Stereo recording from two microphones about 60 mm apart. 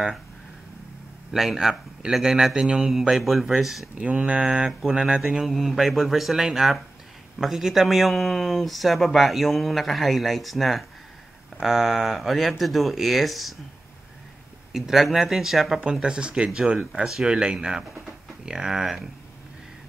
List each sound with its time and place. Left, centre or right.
1.3 s speech: centre
4.0 s speech: centre
14.7 s speech: centre
15.8 s speech: centre